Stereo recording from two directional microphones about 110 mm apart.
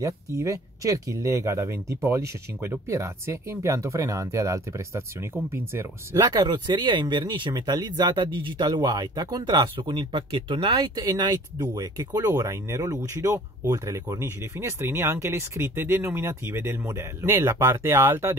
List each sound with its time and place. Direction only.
0.0 s speech: 30° right (ahead or behind)
6.2 s speech: 40° right (ahead or behind); by 18.3 s 20° right (ahead or behind)